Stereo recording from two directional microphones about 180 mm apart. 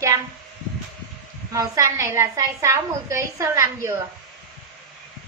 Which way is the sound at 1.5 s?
15° right (ahead or behind).